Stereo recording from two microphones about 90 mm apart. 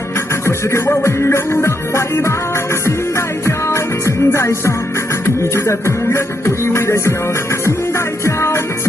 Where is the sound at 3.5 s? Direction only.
30° left (ahead or behind).